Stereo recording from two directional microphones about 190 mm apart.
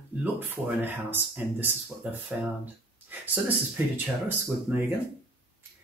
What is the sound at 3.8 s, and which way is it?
Speech, 10° right (ahead or behind).